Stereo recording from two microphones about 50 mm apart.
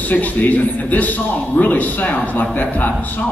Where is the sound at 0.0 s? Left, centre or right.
Left.